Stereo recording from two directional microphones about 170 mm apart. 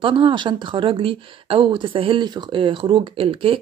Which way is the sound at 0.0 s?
30° right (ahead or behind).